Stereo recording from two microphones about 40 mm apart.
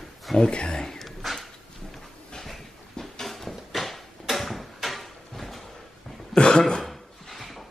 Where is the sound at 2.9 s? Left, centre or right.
Centre.